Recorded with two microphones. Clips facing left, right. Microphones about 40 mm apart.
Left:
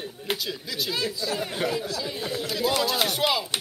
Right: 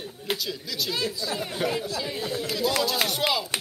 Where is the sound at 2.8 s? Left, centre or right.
Centre.